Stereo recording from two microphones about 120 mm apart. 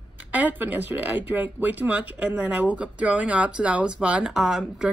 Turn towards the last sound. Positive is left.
turn(degrees=-5)  # may be behind; listen again after turning